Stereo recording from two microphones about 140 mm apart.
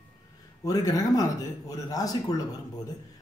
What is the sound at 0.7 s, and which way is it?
Speech, 25° left (ahead or behind).